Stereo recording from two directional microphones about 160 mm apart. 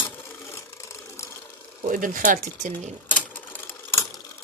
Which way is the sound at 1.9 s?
55° right (ahead or behind).